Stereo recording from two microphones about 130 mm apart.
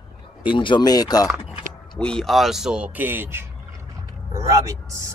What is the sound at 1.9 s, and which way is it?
Speech, 5° left (ahead or behind).